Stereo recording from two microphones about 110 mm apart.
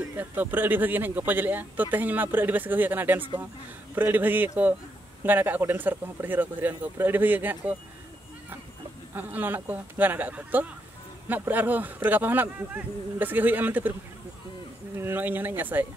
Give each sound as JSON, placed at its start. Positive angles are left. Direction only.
{"t": 0.2, "sound": "speech", "side_deg": -15}
{"t": 9.1, "sound": "speech", "side_deg": -15}
{"t": 15.0, "sound": "speech", "side_deg": -20}